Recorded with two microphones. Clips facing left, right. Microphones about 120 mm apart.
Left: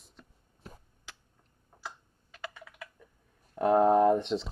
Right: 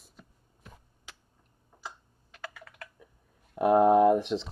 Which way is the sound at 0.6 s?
35° left (ahead or behind).